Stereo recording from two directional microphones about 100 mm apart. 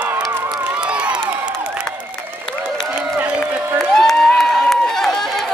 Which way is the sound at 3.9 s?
5° left (ahead or behind).